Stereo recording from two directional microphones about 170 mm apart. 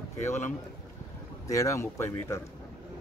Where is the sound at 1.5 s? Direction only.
20° left (ahead or behind).